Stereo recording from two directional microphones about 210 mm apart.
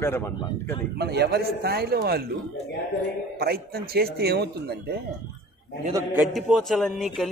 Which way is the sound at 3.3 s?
45° right (ahead or behind).